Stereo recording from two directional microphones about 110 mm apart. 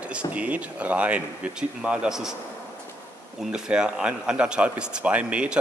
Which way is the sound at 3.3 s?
5° right (ahead or behind).